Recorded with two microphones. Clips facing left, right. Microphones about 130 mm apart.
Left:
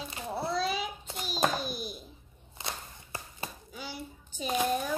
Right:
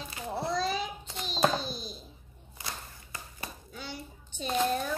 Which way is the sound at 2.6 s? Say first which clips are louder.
Left 2 dB; 25° left (ahead or behind).